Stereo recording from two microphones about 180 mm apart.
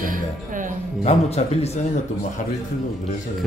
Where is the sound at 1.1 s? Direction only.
35° left (ahead or behind).